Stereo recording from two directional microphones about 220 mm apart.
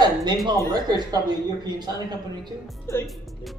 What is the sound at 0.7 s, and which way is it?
A man's voice, 20° right (ahead or behind).